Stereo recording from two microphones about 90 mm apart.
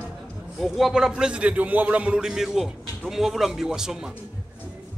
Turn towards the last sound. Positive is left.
turn(degrees=-5)  # may be behind; listen again after turning